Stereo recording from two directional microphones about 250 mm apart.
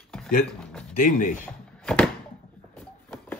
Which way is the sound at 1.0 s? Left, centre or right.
Left.